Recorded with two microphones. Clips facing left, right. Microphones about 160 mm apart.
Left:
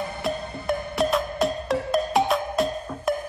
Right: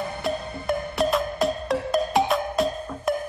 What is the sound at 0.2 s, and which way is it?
Music, centre (ahead or behind).